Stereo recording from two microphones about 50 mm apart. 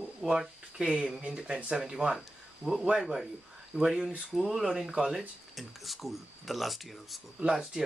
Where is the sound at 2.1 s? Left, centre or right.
Centre.